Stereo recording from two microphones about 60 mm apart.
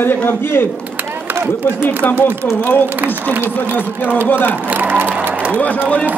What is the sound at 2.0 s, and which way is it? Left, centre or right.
Speech, left.